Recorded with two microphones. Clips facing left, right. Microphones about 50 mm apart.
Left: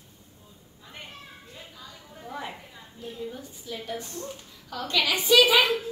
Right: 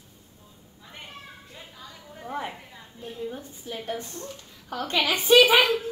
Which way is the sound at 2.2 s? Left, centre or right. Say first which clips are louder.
Right 4 dB; right.